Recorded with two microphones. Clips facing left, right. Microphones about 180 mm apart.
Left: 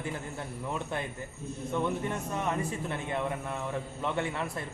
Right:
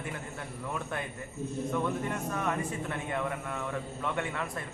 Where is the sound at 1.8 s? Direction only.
25° left (ahead or behind).